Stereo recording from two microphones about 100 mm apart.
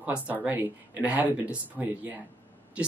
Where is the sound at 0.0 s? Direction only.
15° right (ahead or behind).